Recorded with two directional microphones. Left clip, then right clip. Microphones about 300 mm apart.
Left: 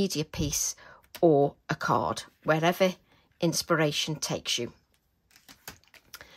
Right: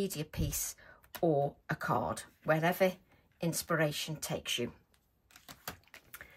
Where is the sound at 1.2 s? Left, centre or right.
Centre.